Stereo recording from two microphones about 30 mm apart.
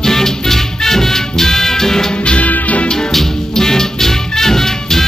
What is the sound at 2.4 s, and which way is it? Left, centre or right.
Music, left.